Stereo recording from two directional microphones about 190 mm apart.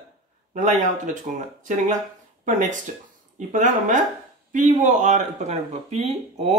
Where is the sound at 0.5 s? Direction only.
40° right (ahead or behind).